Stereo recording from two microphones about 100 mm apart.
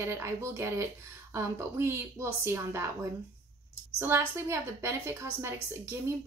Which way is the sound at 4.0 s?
25° right (ahead or behind).